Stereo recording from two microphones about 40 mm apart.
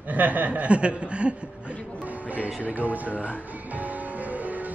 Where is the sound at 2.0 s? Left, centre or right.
Right.